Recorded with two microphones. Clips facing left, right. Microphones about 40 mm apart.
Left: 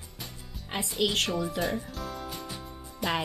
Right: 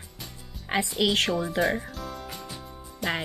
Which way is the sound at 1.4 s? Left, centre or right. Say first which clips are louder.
Right 4 dB; right.